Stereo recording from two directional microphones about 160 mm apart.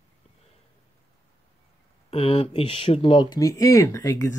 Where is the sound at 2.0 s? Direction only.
35° left (ahead or behind).